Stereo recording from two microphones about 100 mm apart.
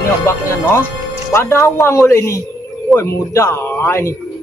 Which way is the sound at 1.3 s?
25° left (ahead or behind).